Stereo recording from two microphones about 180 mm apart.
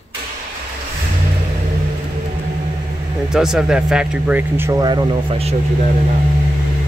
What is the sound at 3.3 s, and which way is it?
Speech, 5° right (ahead or behind).